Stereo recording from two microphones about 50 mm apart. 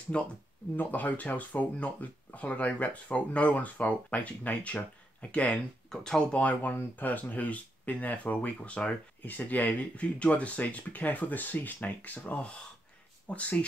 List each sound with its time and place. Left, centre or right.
0.1 s speech: left
0.7 s speech: left
5.9 s speech: centre
6.3 s speech: left